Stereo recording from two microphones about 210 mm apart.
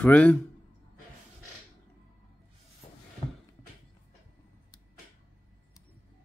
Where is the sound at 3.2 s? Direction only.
30° left (ahead or behind).